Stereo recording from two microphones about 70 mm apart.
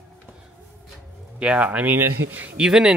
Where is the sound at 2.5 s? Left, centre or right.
Centre.